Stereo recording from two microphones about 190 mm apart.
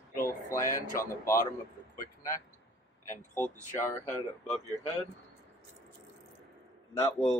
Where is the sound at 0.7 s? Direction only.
15° left (ahead or behind).